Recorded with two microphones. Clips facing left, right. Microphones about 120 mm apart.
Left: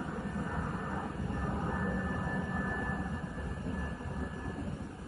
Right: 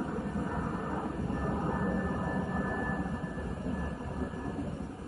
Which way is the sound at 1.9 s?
5° right (ahead or behind).